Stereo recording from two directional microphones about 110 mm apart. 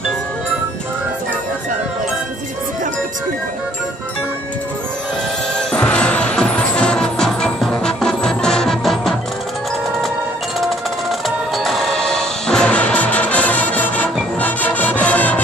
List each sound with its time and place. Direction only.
5.6 s music: 10° left (ahead or behind)
10.6 s music: centre (ahead or behind)